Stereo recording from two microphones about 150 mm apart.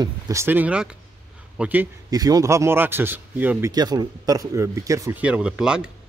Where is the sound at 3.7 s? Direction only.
25° right (ahead or behind).